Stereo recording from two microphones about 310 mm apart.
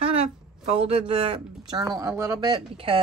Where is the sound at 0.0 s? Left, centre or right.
Centre.